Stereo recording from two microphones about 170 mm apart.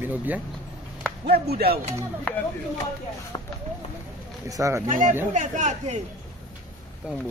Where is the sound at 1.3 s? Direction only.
70° right (ahead or behind).